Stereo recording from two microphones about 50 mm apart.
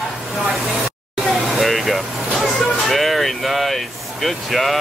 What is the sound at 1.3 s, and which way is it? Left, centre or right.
Vehicle, centre.